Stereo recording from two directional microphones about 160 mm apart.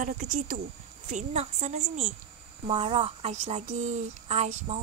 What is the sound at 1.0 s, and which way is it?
Speech, 45° right (ahead or behind).